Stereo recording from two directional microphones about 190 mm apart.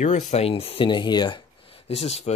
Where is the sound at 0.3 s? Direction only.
30° left (ahead or behind).